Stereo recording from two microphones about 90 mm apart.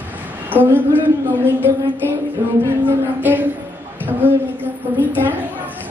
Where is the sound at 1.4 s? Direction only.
25° right (ahead or behind).